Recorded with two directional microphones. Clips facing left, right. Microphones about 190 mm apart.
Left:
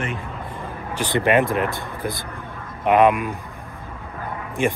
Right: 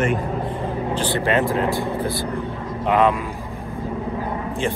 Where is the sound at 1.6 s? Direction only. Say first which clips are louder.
Right 4 dB; 15° right (ahead or behind).